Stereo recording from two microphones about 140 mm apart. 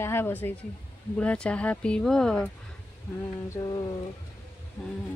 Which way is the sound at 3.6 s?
30° left (ahead or behind).